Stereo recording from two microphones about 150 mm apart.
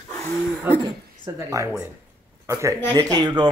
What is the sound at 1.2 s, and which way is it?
Speech, 20° right (ahead or behind).